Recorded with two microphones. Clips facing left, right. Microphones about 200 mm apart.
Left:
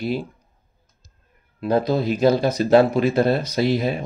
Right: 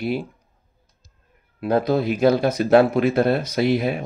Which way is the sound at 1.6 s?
Centre (ahead or behind).